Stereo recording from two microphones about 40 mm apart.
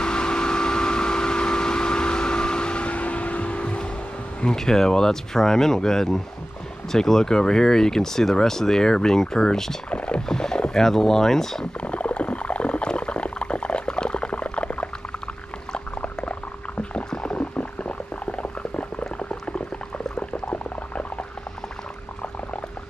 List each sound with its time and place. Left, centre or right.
0.0 s vehicle: left
4.6 s speech: centre
9.8 s music: left
10.2 s speech: centre
11.8 s a sound: left
15.7 s a sound: left
20.2 s boiling: left